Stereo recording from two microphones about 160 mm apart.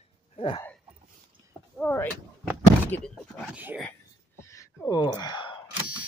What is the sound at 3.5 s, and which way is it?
Speech, 10° right (ahead or behind).